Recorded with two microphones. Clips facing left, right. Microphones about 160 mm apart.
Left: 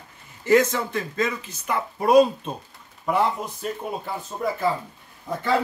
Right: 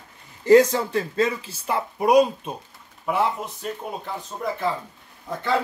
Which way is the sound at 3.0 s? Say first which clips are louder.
Left 1 dB; 5° right (ahead or behind).